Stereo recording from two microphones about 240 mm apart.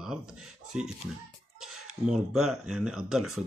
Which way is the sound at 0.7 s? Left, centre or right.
Centre.